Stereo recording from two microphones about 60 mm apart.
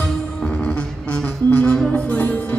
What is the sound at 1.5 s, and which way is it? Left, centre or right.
Music, left.